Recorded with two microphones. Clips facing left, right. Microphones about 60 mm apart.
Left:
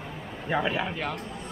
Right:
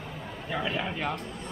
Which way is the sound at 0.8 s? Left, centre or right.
Centre.